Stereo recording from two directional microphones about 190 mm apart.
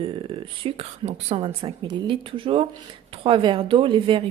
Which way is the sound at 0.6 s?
30° right (ahead or behind).